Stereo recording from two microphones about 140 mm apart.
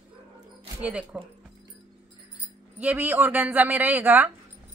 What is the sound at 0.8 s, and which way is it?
Speech, 10° right (ahead or behind).